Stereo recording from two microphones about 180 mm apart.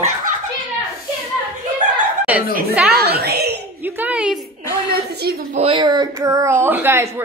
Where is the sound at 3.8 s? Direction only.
10° right (ahead or behind).